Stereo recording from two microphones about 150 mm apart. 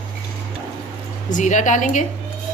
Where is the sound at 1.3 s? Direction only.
55° left (ahead or behind).